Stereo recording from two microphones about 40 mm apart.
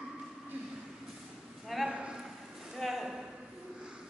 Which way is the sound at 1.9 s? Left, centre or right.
Right.